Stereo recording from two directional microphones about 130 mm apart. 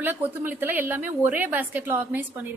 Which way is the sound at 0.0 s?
15° right (ahead or behind).